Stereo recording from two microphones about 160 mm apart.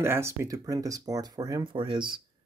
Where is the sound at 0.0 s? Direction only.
15° right (ahead or behind).